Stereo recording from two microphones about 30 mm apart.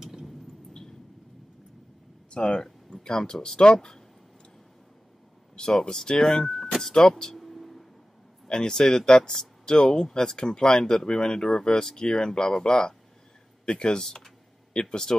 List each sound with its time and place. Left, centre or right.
0.0 s a sound: centre
2.3 s speech: left
5.9 s speech: centre
6.9 s speech: left
7.3 s a sound: centre
8.5 s speech: left